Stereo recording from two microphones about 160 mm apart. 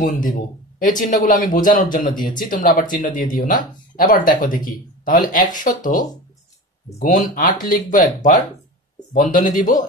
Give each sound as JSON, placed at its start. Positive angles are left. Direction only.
{"t": 0.0, "sound": "speech", "side_deg": 55}